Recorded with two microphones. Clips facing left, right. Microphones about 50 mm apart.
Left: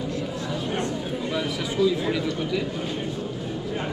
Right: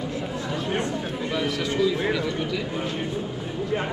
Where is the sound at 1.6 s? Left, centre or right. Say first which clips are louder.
Left 2 dB; centre.